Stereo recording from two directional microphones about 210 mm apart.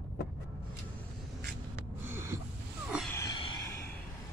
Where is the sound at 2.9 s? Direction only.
Centre (ahead or behind).